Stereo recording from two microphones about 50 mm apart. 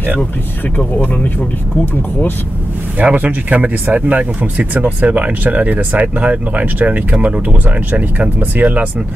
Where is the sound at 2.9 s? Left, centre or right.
Right.